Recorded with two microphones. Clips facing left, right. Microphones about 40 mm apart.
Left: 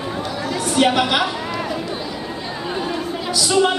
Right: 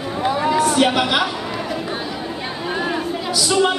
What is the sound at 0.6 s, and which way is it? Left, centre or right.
Speech, centre.